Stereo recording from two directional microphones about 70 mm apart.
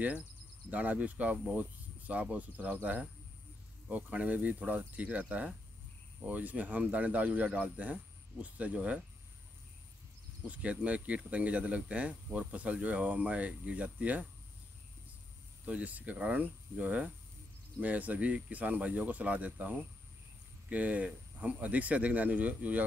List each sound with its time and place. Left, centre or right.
0.7 s speech: right
10.4 s speech: centre
15.6 s speech: centre